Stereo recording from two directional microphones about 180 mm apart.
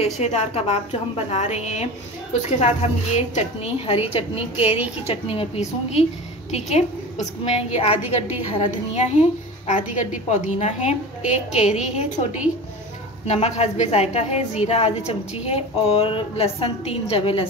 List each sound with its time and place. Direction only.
0.0 s a woman's voice: 35° left (ahead or behind)